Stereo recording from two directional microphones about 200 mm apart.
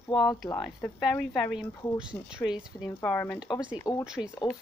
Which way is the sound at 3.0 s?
10° left (ahead or behind).